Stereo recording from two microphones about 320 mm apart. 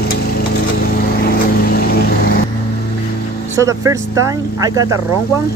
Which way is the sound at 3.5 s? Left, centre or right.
Centre.